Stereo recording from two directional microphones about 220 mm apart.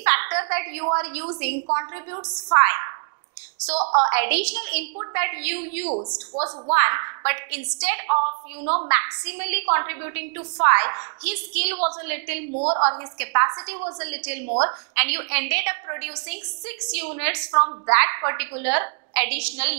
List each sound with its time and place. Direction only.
0.0 s a sound: 15° right (ahead or behind)
0.9 s a woman's voice: 10° right (ahead or behind)
3.7 s a woman's voice: 30° right (ahead or behind)
4.1 s a woman's voice: 10° right (ahead or behind)
5.9 s a woman's voice: 30° right (ahead or behind)
6.7 s a woman's voice: 15° right (ahead or behind)
12.5 s a woman's voice: 30° right (ahead or behind)
13.2 s a woman's voice: 15° right (ahead or behind)
13.9 s a woman's voice: 10° right (ahead or behind)
14.5 s a woman's voice: 30° right (ahead or behind)
15.0 s a woman's voice: 10° right (ahead or behind)